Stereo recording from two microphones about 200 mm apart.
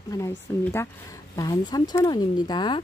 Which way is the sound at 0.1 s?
10° left (ahead or behind).